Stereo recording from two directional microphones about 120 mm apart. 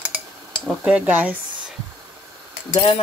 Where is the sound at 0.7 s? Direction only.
10° right (ahead or behind).